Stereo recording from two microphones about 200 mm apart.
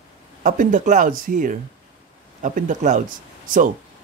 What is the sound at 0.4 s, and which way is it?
Speech, 40° right (ahead or behind).